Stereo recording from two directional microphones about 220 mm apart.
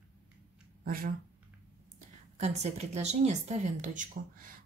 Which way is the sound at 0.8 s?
40° right (ahead or behind).